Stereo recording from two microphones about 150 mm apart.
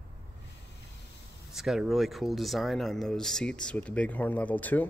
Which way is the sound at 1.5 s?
5° right (ahead or behind).